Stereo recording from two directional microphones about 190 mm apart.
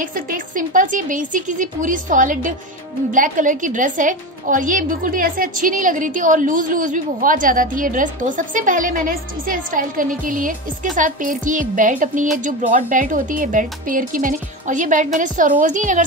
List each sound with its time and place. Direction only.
0.0 s a woman's voice: 45° right (ahead or behind)